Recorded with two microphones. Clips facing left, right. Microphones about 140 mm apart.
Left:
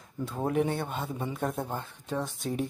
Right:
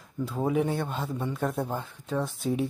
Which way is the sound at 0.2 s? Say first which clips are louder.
Right 2 dB; centre (ahead or behind).